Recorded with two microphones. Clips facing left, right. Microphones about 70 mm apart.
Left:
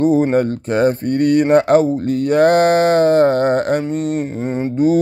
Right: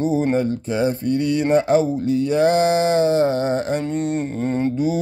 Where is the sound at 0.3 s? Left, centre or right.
Left.